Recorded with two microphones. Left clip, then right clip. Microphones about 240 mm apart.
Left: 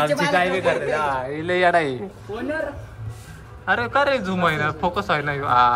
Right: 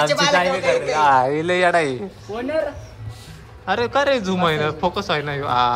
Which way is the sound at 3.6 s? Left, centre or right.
Centre.